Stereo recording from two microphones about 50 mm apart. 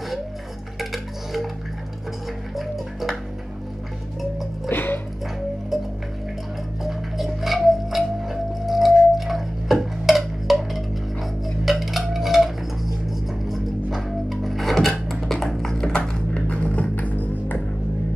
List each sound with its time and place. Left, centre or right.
0.7 s music: centre
2.5 s music: centre
4.6 s music: left
5.7 s music: centre
6.8 s tick-tock: centre
15.1 s music: centre; by 17.6 s left